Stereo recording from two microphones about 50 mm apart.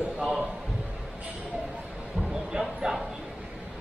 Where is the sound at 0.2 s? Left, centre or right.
Centre.